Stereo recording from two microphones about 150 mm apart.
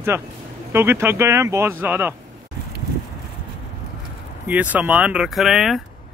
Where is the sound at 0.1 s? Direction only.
15° right (ahead or behind).